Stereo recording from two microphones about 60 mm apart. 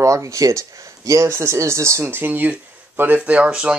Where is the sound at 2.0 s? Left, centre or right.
Right; by 3.7 s centre.